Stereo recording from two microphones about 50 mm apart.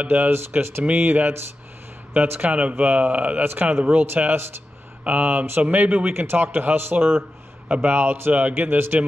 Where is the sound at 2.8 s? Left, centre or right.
Right.